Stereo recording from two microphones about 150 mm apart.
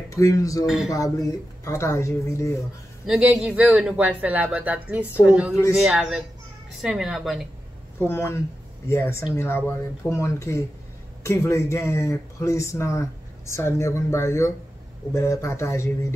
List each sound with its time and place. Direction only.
0.1 s speech: 20° left (ahead or behind)
0.7 s a woman's voice: centre (ahead or behind)
0.9 s speech: 20° left (ahead or behind)
3.1 s a woman's voice: 5° right (ahead or behind)
8.0 s speech: 15° left (ahead or behind)